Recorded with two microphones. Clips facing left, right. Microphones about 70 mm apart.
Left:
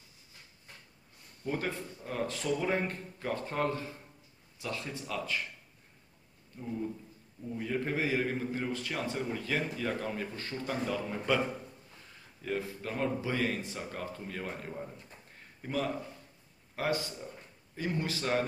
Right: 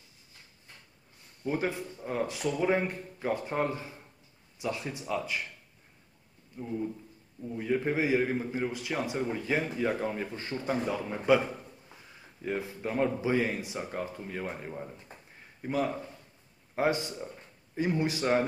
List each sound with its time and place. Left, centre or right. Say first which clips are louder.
1.4 s a man's voice: right 4 dB; centre
6.6 s a man's voice: right 3 dB; centre